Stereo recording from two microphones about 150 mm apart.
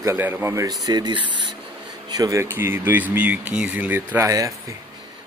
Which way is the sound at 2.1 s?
20° right (ahead or behind).